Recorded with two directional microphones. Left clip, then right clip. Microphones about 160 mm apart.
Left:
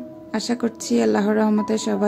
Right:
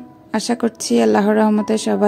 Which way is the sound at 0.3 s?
40° right (ahead or behind).